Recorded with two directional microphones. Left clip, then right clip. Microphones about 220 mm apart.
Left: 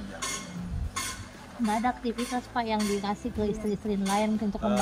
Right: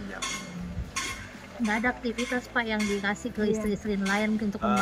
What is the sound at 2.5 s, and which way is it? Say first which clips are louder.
Speech: left 1 dB; 25° right (ahead or behind).